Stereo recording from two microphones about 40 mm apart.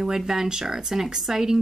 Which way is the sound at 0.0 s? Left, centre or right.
Centre.